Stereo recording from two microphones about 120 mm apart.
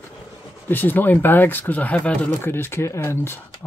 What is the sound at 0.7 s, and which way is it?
Speech, 15° left (ahead or behind).